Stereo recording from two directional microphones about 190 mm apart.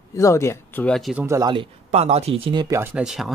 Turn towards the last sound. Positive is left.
turn(degrees=0)  # may be behind; listen again after turning